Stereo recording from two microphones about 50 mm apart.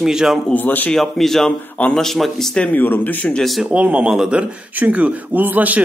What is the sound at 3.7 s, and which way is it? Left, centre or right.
Speech, right.